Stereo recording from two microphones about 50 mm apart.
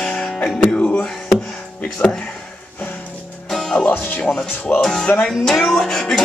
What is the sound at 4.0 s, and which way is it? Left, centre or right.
Speech, left.